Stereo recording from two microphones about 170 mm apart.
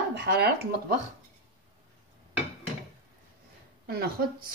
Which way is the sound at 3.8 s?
65° right (ahead or behind).